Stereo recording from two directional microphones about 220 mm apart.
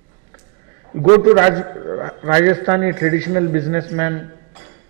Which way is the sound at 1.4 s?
20° right (ahead or behind).